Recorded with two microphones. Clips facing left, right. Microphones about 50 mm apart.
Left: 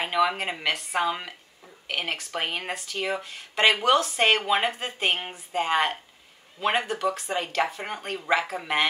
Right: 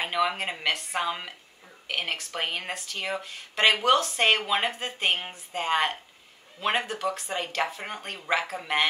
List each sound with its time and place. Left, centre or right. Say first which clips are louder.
0.0 s speech: left 2 dB; centre